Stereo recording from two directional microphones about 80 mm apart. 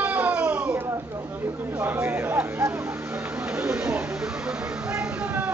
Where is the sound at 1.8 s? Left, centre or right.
Right.